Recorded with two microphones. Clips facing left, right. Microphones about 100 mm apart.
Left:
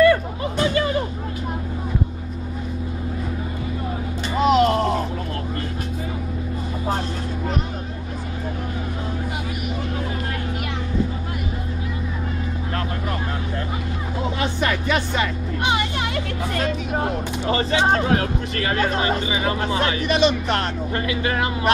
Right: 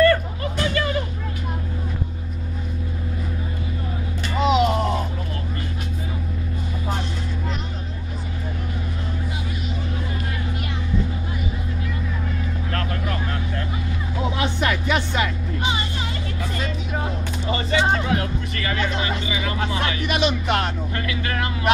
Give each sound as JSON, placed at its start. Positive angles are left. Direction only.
{"t": 0.0, "sound": "music", "side_deg": 10}
{"t": 0.6, "sound": "music", "side_deg": 25}
{"t": 4.4, "sound": "a sound", "side_deg": 0}
{"t": 14.3, "sound": "music", "side_deg": -5}
{"t": 15.6, "sound": "music", "side_deg": 65}
{"t": 16.5, "sound": "a sound", "side_deg": 50}
{"t": 17.8, "sound": "speech", "side_deg": 45}
{"t": 19.7, "sound": "speech", "side_deg": 25}
{"t": 20.1, "sound": "speech", "side_deg": -10}
{"t": 20.9, "sound": "speech", "side_deg": 25}